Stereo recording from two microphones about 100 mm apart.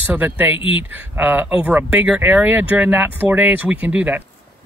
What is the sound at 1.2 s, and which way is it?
Speech, 20° right (ahead or behind).